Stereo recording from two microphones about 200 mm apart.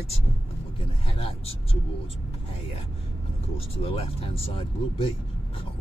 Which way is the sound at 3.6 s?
30° left (ahead or behind).